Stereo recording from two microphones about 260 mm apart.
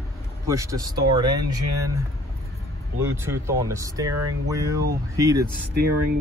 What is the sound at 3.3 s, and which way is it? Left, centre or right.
Speech, centre.